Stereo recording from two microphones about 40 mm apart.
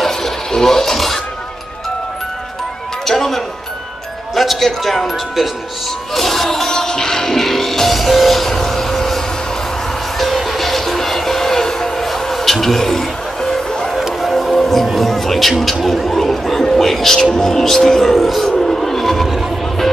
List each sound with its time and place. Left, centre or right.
0.0 s filing: centre
3.1 s music: centre
4.6 s speech: centre
6.1 s music: centre
13.7 s a sound: centre
13.9 s a sound: centre
14.3 s music: centre
15.8 s speech: centre
18.4 s music: centre